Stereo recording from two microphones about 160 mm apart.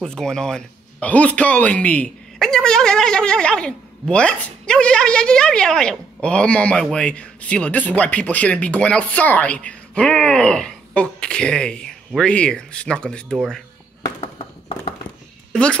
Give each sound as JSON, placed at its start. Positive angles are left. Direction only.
{"t": 0.0, "sound": "speech", "side_deg": 5}
{"t": 14.0, "sound": "a sound", "side_deg": 25}
{"t": 15.5, "sound": "speech", "side_deg": 5}